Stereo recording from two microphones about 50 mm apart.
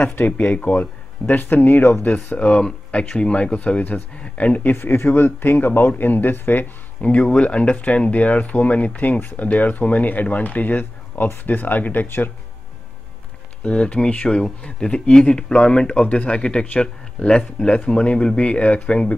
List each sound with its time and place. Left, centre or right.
0.0 s speech: left
1.2 s speech: left
2.2 s speech: left
4.6 s speech: left
13.7 s speech: left